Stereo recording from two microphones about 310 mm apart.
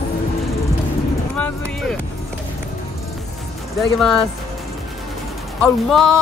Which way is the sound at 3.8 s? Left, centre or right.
Centre.